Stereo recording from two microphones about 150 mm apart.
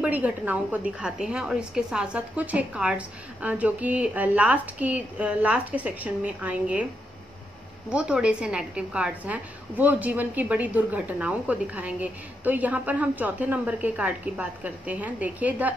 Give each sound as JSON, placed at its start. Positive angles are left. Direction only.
{"t": 0.0, "sound": "a woman's voice", "side_deg": -10}
{"t": 7.9, "sound": "a woman's voice", "side_deg": -5}